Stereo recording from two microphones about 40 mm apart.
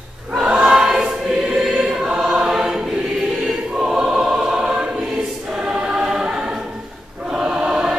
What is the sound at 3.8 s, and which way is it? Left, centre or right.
Choir, centre.